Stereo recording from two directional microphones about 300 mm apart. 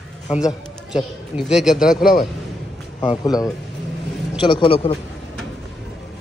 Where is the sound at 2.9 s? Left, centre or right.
Centre.